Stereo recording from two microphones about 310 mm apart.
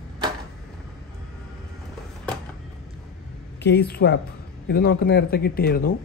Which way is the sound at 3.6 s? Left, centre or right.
Left.